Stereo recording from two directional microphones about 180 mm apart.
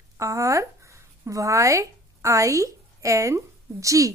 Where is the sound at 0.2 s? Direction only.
15° right (ahead or behind).